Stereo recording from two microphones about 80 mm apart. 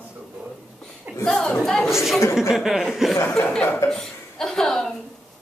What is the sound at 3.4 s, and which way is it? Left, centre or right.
Speech, centre.